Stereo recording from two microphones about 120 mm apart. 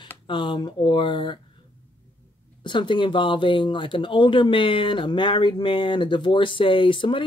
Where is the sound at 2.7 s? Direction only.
40° left (ahead or behind).